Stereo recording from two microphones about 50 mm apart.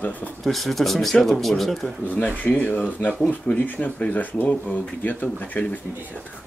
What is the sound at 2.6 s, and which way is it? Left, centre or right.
Speech, left.